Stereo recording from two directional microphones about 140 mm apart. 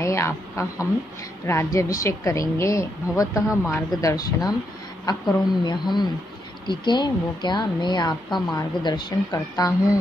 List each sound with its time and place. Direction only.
0.0 s a woman's voice: 20° left (ahead or behind)